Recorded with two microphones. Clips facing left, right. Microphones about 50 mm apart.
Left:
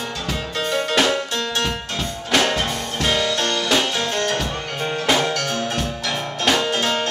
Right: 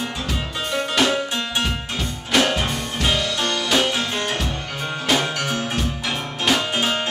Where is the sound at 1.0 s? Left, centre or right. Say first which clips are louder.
Left 1 dB; centre.